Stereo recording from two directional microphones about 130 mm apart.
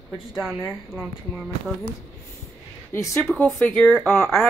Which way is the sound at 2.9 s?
20° left (ahead or behind).